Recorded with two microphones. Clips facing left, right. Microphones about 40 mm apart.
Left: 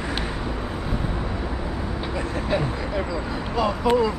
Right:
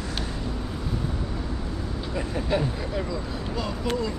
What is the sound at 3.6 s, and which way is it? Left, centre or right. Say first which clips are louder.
Speech: left 9 dB; left.